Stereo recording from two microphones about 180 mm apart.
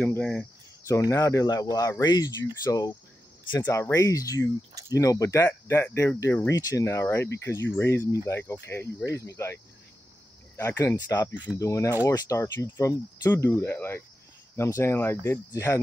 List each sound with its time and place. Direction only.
0.0 s speech: 10° left (ahead or behind)
1.1 s speech: 15° left (ahead or behind)
4.6 s speech: 20° right (ahead or behind)
4.9 s speech: 20° left (ahead or behind)